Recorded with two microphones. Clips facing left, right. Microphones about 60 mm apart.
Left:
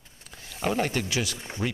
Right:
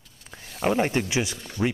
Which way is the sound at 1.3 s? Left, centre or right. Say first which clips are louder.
Right 4 dB; left.